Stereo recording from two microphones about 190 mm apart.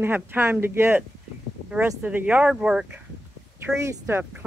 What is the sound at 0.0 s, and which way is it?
Speech, 10° right (ahead or behind).